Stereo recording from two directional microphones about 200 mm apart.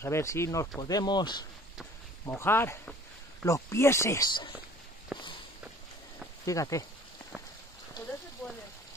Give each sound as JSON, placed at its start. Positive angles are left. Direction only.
{"t": 0.0, "sound": "speech", "side_deg": 15}
{"t": 5.1, "sound": "walk", "side_deg": -5}
{"t": 6.4, "sound": "speech", "side_deg": 15}